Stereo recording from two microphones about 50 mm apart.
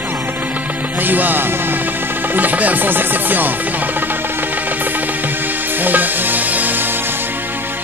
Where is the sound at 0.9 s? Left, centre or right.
Right.